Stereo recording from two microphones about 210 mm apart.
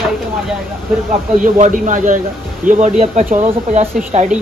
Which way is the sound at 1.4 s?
40° right (ahead or behind).